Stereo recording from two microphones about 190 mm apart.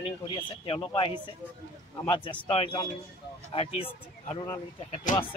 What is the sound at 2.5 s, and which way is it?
Speech, 30° left (ahead or behind).